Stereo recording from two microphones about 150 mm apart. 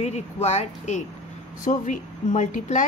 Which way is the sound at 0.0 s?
45° left (ahead or behind).